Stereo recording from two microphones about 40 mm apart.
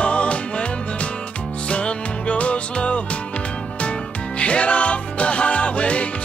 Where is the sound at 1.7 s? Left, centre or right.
Left.